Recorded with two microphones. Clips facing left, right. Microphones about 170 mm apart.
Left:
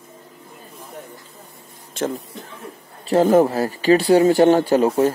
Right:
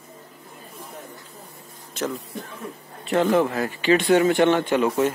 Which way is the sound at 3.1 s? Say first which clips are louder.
Left 5 dB; 40° left (ahead or behind).